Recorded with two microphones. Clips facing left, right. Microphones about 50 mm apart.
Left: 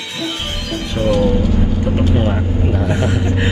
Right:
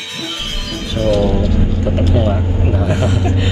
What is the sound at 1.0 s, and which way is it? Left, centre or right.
Music, centre.